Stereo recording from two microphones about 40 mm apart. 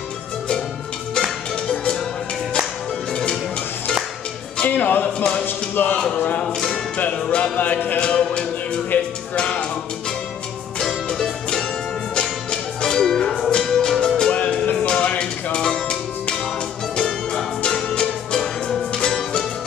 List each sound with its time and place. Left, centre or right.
4.6 s music: left
5.9 s a sound: left
6.4 s music: centre
7.0 s music: left
8.0 s music: left
8.9 s speech: left
10.8 s music: centre
14.3 s music: left